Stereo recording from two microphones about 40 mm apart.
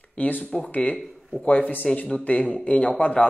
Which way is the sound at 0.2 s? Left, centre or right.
Left.